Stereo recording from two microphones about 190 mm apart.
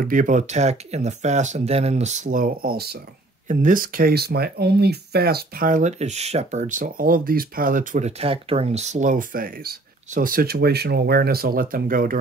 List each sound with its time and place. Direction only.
0.0 s speech: 45° right (ahead or behind)